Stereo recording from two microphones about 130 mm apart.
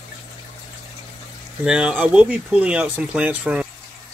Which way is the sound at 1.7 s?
5° right (ahead or behind).